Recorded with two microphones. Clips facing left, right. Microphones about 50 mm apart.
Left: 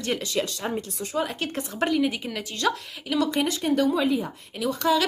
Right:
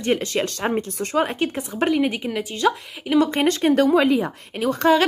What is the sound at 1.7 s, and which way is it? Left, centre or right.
Speech, right.